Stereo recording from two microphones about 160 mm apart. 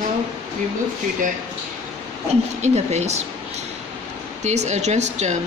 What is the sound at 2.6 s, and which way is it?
Speech, 45° right (ahead or behind).